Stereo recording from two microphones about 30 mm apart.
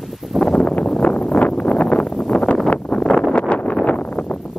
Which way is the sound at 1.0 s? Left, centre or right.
Left.